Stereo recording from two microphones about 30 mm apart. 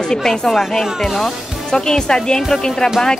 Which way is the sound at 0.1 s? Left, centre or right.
Centre.